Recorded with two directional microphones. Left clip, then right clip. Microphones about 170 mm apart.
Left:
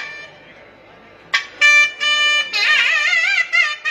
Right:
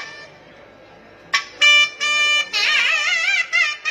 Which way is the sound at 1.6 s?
40° right (ahead or behind).